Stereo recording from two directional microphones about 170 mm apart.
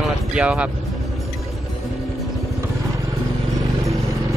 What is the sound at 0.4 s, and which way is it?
Speech, 5° right (ahead or behind).